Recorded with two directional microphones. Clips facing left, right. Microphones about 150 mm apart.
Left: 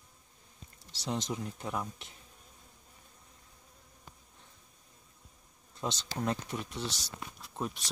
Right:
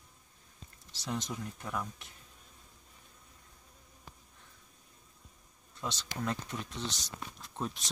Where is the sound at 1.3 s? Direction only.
20° left (ahead or behind).